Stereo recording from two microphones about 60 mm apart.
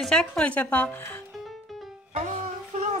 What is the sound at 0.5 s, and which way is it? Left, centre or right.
Speech, left.